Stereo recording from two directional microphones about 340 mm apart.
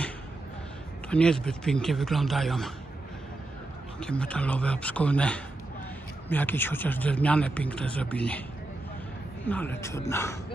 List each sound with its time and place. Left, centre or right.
1.1 s speech: centre
4.0 s speech: centre
9.5 s speech: centre